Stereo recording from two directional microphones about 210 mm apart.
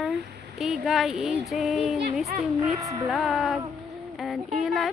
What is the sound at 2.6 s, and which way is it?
Speech, 15° right (ahead or behind).